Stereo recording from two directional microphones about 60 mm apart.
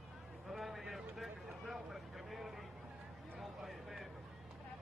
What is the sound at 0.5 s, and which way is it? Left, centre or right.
Vehicle, centre.